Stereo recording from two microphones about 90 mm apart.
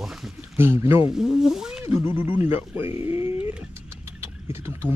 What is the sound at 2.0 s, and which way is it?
Speech, 25° right (ahead or behind).